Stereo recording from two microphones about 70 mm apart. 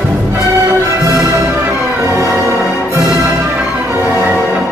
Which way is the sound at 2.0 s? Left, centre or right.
Right.